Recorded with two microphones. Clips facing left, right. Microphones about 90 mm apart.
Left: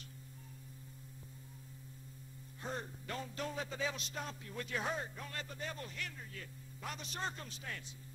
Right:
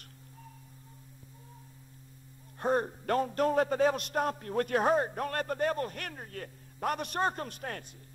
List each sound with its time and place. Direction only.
2.6 s a man's voice: 55° right (ahead or behind)